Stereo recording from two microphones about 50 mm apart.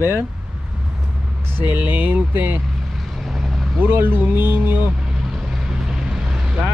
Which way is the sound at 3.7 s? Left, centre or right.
Right.